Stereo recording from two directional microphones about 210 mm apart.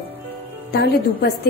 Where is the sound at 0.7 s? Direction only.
50° left (ahead or behind).